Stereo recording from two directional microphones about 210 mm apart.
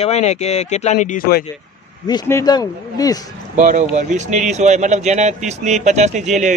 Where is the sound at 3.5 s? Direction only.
35° right (ahead or behind).